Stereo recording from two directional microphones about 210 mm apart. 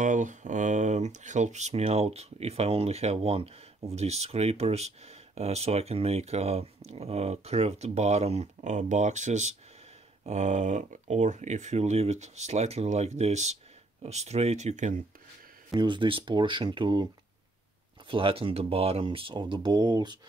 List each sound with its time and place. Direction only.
0.0 s speech: 35° right (ahead or behind)
15.7 s speech: 20° right (ahead or behind)